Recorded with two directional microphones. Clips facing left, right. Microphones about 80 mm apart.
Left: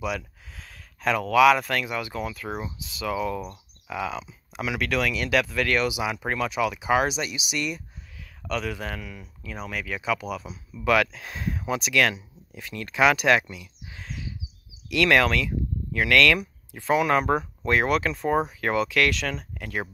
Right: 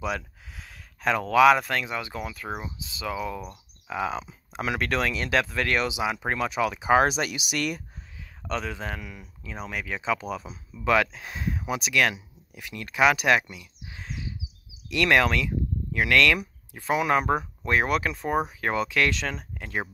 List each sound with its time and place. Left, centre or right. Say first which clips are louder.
0.6 s a sound: even; centre
1.7 s speech: left 1 dB; right
3.8 s speech: right 1 dB; right
8.5 s speech: left 1 dB; right
9.8 s speech: even; right
11.1 s speech: even; centre
13.8 s a sound: right 1 dB; centre
14.9 s speech: left 1 dB; centre